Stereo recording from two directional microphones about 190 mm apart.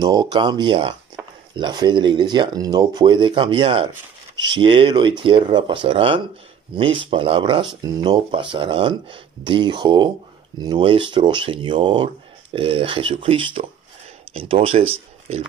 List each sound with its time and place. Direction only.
0.0 s speech: 20° right (ahead or behind)